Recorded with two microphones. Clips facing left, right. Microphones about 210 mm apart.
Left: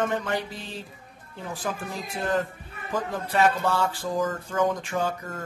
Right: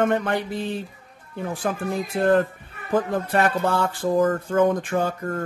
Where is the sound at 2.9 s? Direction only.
55° right (ahead or behind).